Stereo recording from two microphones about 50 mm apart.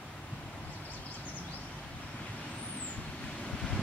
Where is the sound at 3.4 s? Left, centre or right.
Left.